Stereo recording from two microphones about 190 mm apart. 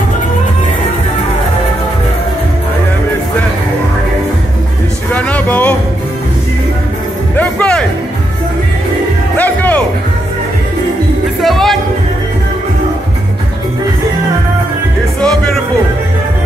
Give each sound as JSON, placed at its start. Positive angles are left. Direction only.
{"t": 5.1, "sound": "a sound", "side_deg": 10}
{"t": 7.3, "sound": "music", "side_deg": 5}
{"t": 9.4, "sound": "music", "side_deg": 10}
{"t": 11.4, "sound": "music", "side_deg": 0}
{"t": 15.1, "sound": "music", "side_deg": 5}